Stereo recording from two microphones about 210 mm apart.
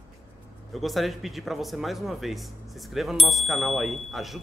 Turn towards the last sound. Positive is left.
turn(degrees=0)  # may be behind; listen again after turning